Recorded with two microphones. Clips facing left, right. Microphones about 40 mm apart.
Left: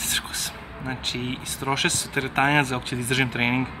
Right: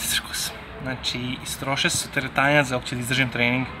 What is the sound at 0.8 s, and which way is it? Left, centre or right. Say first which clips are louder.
Speech: even; centre.